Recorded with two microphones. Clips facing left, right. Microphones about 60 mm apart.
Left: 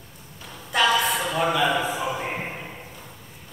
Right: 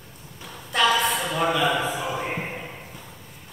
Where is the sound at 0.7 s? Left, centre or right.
Centre.